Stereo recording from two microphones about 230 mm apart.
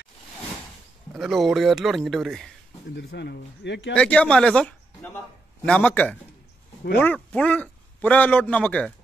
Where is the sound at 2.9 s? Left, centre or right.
Left.